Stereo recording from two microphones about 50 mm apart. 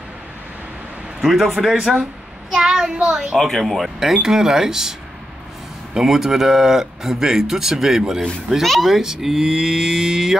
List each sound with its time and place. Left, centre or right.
1.2 s speech: centre
3.3 s speech: centre
4.0 s speech: centre
5.9 s speech: centre
8.0 s speech: centre
8.6 s speech: centre